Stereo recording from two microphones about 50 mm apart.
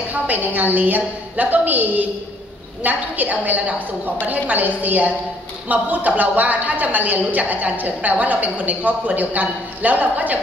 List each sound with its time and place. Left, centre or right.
0.1 s a woman's voice: right